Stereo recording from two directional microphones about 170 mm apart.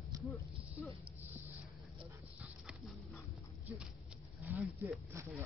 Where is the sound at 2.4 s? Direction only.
10° right (ahead or behind).